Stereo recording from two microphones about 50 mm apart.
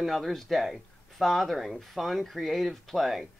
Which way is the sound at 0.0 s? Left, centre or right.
Centre.